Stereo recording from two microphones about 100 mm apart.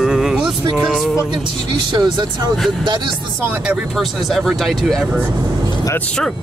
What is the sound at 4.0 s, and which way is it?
Speech, centre (ahead or behind).